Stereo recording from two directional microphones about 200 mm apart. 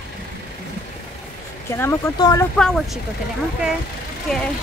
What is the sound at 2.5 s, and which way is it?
Speech, centre (ahead or behind).